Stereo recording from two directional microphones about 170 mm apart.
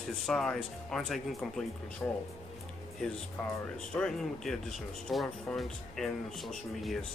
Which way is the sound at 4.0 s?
5° left (ahead or behind).